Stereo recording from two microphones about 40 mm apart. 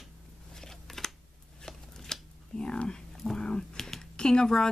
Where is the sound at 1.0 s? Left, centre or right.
Centre.